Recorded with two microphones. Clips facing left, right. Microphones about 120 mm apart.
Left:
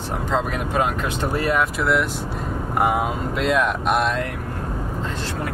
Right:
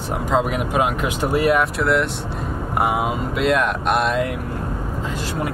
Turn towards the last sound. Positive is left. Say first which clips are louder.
# right 2 dB
turn(degrees=0)  # may be behind; listen again after turning